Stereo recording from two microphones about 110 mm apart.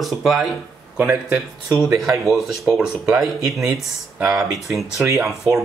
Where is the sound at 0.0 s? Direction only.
Centre (ahead or behind).